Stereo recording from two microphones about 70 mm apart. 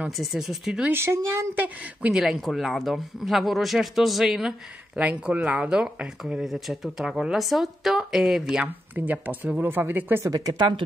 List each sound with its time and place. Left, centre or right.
0.2 s speech: centre
0.9 s speech: right
1.6 s speech: centre
4.9 s speech: right
6.4 s speech: centre
8.9 s speech: right
10.2 s speech: right